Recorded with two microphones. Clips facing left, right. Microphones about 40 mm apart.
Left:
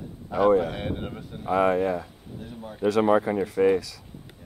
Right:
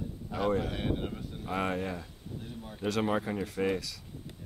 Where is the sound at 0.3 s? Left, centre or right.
Centre.